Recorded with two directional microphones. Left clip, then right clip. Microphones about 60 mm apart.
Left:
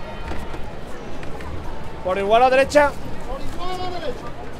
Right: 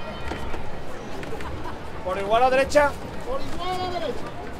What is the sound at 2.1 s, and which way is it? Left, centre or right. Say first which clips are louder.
Speech: left 5 dB; left.